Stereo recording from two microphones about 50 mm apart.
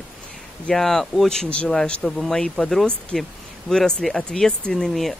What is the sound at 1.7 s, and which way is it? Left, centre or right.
Speech, centre.